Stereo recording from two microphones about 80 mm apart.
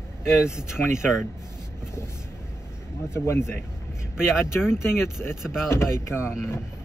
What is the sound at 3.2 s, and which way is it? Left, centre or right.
Speech, left.